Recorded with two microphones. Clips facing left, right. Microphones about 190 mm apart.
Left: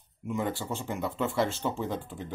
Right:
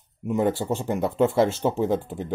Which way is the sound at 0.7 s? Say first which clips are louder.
Right 7 dB; 60° right (ahead or behind).